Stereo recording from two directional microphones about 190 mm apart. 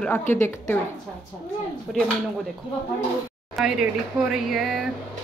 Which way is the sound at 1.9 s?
Centre (ahead or behind).